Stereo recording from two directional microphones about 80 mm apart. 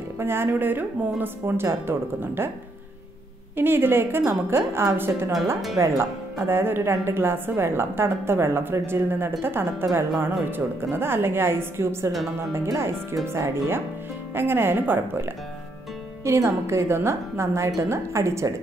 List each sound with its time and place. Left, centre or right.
0.2 s a woman's voice: right
3.5 s a woman's voice: right
16.3 s a woman's voice: right